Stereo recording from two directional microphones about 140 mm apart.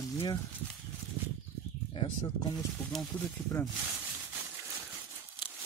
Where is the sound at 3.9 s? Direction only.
15° right (ahead or behind).